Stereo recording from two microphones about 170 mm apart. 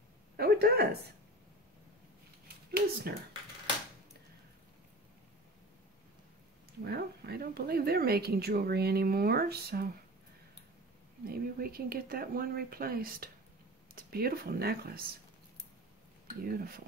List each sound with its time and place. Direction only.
0.4 s speech: 65° right (ahead or behind)
2.4 s a sound: 65° right (ahead or behind)
6.8 s speech: 70° right (ahead or behind)
11.2 s speech: 60° right (ahead or behind)
16.5 s speech: 60° right (ahead or behind)